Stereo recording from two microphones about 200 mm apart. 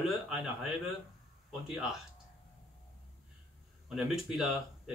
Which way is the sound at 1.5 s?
Centre (ahead or behind).